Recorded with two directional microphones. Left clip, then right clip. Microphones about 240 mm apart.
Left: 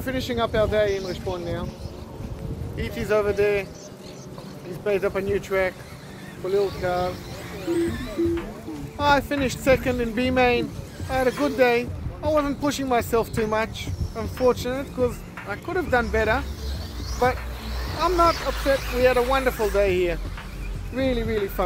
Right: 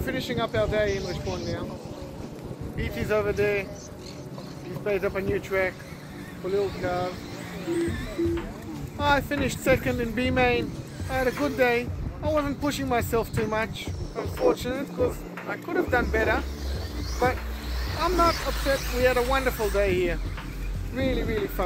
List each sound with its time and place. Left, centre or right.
0.0 s speech: centre
2.8 s speech: centre
4.8 s speech: centre
17.9 s speech: centre
18.6 s speech: right
18.9 s speech: centre